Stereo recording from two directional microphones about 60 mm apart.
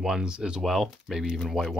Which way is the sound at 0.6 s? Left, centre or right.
Centre.